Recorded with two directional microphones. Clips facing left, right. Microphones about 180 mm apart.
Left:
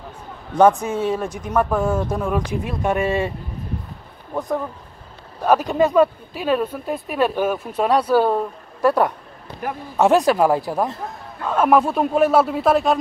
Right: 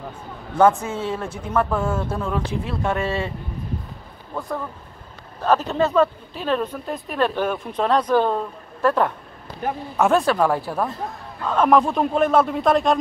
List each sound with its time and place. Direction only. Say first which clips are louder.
0.6 s speech: left 2 dB; 15° left (ahead or behind)
4.3 s a man's voice: left 5 dB; 20° left (ahead or behind)